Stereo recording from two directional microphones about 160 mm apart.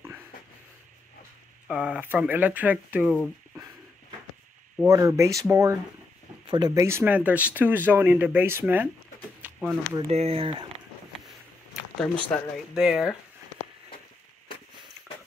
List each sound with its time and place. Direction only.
1.7 s speech: 5° right (ahead or behind)
4.8 s speech: 20° right (ahead or behind)
9.6 s speech: centre (ahead or behind)
9.9 s speech: 40° right (ahead or behind)
12.3 s speech: 5° left (ahead or behind)
12.7 s speech: 5° right (ahead or behind)